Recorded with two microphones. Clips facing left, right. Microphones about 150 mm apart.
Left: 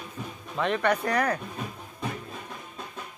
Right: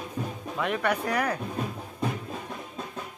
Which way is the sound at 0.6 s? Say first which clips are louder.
Left 2 dB; 5° right (ahead or behind).